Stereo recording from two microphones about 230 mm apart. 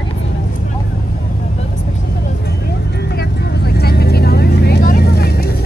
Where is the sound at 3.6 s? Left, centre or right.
Left.